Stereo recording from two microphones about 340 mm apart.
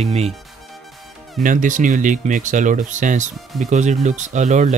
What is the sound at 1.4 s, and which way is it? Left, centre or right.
Speech, right.